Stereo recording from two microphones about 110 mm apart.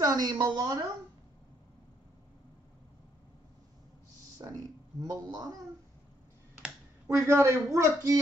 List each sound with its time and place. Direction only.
0.0 s a woman's voice: 35° right (ahead or behind)
4.4 s a woman's voice: 40° right (ahead or behind)
7.1 s speech: 25° right (ahead or behind)